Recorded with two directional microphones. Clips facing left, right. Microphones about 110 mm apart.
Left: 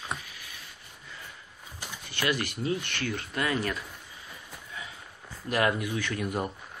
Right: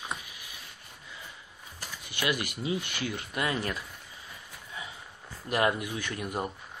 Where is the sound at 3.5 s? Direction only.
25° right (ahead or behind).